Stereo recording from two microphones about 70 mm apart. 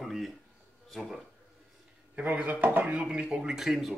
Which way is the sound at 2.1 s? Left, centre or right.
Right.